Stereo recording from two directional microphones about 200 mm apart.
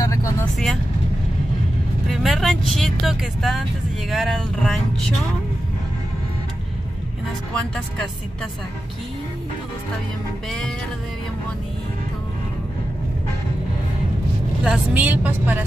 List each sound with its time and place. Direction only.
0.0 s vehicle: 15° left (ahead or behind)
2.0 s speech: centre (ahead or behind)
7.5 s speech: 5° left (ahead or behind)
14.6 s a woman's voice: 5° right (ahead or behind)